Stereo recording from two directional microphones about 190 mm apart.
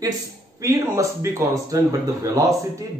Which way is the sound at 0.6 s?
15° right (ahead or behind).